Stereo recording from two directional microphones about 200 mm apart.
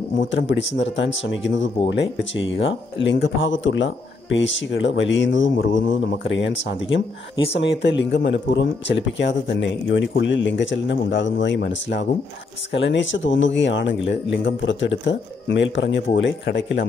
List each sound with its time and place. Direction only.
0.3 s speech: 65° left (ahead or behind)